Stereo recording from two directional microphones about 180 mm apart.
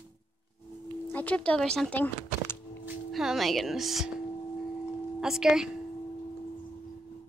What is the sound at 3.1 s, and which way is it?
Speech, centre (ahead or behind).